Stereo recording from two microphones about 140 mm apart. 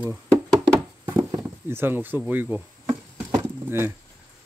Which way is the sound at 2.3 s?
15° right (ahead or behind).